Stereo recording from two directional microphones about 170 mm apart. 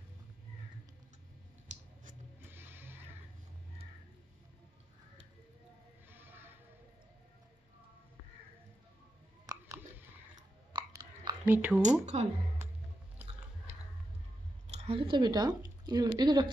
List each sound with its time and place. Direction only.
2.4 s music: 10° right (ahead or behind)
6.0 s music: 10° right (ahead or behind)
9.5 s a sound: 15° right (ahead or behind)
10.7 s a sound: 25° right (ahead or behind)
11.4 s speech: 10° right (ahead or behind)
12.1 s speech: 40° right (ahead or behind)
14.7 s speech: 35° right (ahead or behind)